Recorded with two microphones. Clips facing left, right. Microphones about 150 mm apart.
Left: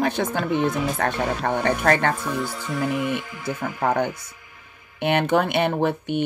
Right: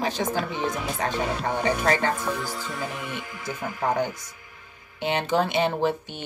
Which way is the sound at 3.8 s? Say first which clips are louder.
Left 3 dB; 60° left (ahead or behind).